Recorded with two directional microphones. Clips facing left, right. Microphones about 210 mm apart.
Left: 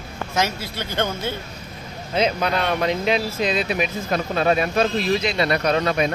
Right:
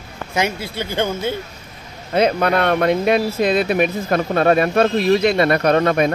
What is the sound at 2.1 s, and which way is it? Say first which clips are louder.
Speech: right 5 dB; 55° right (ahead or behind).